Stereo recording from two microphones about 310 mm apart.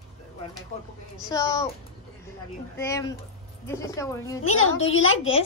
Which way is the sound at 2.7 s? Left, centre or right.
Centre.